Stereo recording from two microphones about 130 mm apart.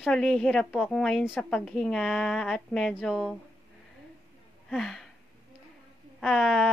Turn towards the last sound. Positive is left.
turn(degrees=5)  # may be behind; listen again after turning